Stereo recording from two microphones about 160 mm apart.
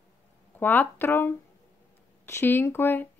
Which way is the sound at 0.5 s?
10° left (ahead or behind).